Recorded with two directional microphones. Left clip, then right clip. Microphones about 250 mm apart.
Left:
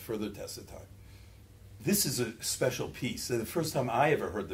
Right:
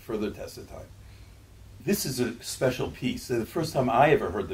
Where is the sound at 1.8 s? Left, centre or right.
Left.